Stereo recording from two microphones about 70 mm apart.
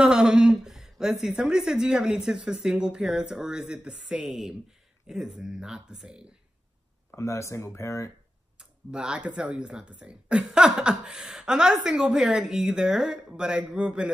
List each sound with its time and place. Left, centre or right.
0.0 s a woman's voice: centre
7.2 s speech: left
8.5 s speech: centre